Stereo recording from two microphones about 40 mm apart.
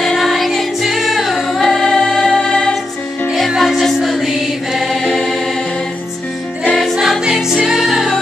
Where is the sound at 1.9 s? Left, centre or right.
Left.